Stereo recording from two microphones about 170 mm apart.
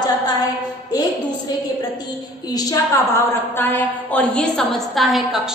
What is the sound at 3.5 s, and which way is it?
A woman's voice, 10° left (ahead or behind).